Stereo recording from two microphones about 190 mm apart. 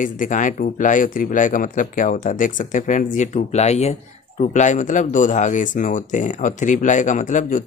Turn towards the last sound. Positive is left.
turn(degrees=40)  # may be behind; listen again after turning